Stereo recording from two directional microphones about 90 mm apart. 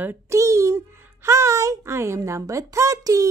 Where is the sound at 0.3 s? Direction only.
35° right (ahead or behind).